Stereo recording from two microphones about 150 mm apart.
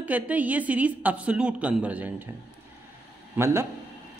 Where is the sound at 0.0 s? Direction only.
10° right (ahead or behind).